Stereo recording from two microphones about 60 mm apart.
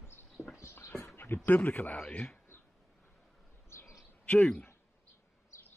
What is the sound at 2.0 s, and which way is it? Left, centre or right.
Speech, centre.